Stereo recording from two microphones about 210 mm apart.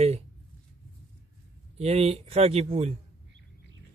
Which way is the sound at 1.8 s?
30° right (ahead or behind).